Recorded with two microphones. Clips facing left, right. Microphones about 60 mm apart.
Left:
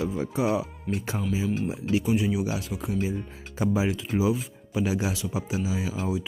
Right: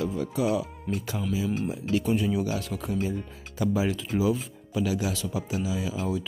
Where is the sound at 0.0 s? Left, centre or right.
Left.